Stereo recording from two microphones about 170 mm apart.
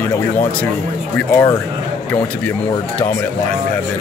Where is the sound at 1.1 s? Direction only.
10° left (ahead or behind).